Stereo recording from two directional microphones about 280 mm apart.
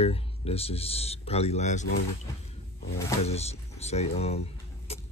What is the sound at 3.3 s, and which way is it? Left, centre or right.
Speech, left.